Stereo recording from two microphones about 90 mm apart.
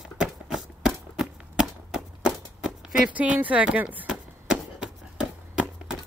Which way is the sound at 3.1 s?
15° right (ahead or behind).